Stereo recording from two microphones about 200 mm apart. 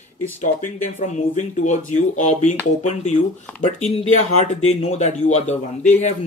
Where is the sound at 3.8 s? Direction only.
35° left (ahead or behind).